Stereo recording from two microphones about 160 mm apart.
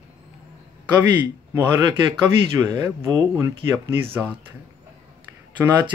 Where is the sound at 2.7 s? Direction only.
15° right (ahead or behind).